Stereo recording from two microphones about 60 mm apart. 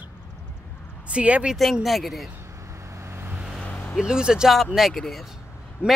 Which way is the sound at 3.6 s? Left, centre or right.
Centre.